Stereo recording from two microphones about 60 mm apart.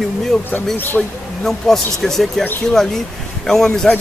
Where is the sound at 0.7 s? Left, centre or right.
Left.